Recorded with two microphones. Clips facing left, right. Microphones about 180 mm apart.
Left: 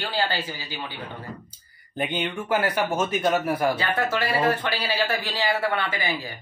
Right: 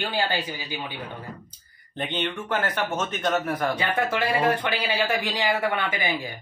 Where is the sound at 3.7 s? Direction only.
15° right (ahead or behind).